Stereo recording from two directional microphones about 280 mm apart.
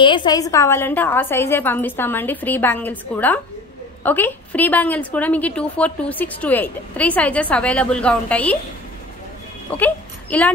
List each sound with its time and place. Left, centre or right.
0.0 s a woman's voice: centre
9.8 s speech: centre